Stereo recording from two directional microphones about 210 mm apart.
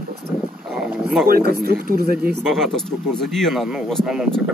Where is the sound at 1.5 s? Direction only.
50° right (ahead or behind).